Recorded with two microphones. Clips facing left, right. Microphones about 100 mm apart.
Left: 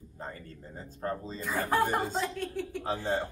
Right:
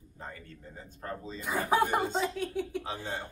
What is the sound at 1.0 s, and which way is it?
Speech, 35° left (ahead or behind).